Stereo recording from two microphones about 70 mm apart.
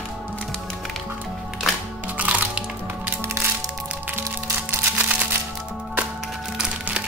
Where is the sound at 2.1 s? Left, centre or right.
Right.